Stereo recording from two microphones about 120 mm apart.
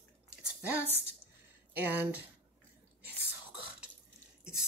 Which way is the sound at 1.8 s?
15° right (ahead or behind).